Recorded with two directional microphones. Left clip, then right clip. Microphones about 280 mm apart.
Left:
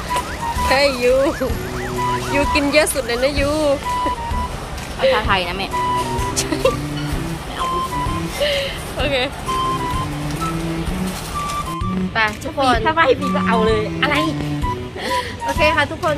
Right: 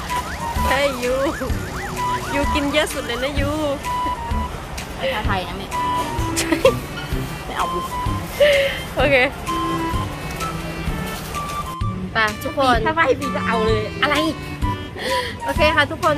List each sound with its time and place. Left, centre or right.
0.7 s speech: centre
5.0 s speech: centre
6.3 s speech: centre
8.4 s speech: centre
12.2 s speech: centre
12.8 s speech: centre
13.9 s speech: right
15.4 s speech: centre